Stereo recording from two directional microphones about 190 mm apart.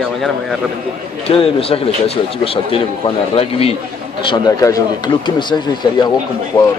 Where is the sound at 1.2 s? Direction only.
30° left (ahead or behind).